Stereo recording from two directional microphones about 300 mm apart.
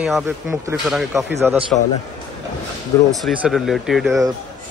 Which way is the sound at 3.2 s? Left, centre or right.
Centre.